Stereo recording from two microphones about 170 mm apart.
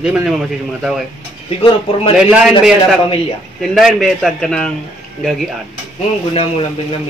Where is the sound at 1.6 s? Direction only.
35° left (ahead or behind).